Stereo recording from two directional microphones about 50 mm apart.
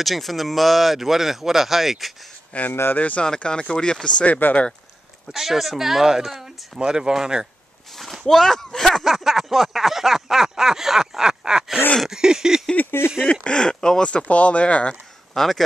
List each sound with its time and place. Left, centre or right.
0.0 s speech: centre
2.7 s speech: left
3.0 s speech: left
4.2 s speech: left
5.3 s speech: centre
8.3 s speech: centre
12.9 s speech: left
13.3 s speech: left
15.3 s a man's voice: centre